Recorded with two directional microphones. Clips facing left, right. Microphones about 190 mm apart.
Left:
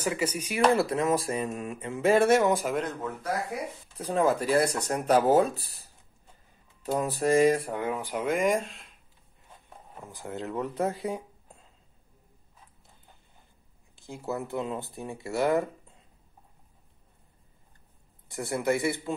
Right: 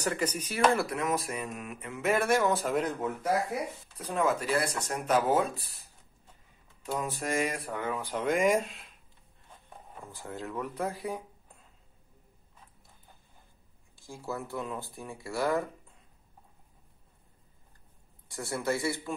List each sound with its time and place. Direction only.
0.0 s a man's voice: 10° left (ahead or behind)
0.7 s speech: 30° left (ahead or behind)
2.5 s speech: 5° left (ahead or behind)
4.0 s speech: 30° left (ahead or behind)
6.9 s speech: 35° left (ahead or behind)
7.7 s a man's voice: 15° left (ahead or behind)
8.2 s speech: centre (ahead or behind)
10.1 s speech: 20° left (ahead or behind)
13.9 s speech: 20° left (ahead or behind)
18.3 s a man's voice: 20° left (ahead or behind)